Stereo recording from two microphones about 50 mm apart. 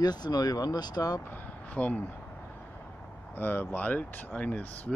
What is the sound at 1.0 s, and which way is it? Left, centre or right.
Speech, left.